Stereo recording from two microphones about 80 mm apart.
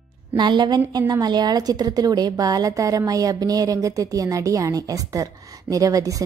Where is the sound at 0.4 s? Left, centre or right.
Right.